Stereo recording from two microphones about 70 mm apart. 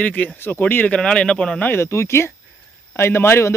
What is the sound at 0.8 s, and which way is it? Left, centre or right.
Speech, centre.